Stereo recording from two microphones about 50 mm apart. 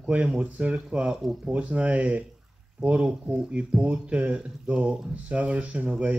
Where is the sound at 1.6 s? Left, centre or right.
Right.